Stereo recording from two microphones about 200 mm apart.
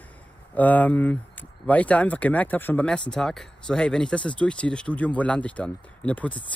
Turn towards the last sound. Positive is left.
turn(degrees=5)  # may be behind; listen again after turning